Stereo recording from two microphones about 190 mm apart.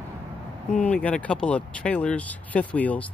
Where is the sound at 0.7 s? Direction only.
5° left (ahead or behind).